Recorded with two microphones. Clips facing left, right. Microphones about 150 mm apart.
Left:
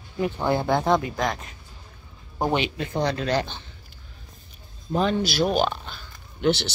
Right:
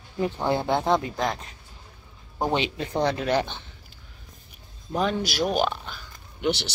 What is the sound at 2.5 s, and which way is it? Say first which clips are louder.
Speech: even; 25° right (ahead or behind).